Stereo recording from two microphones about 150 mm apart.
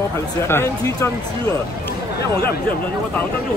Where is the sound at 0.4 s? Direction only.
15° left (ahead or behind).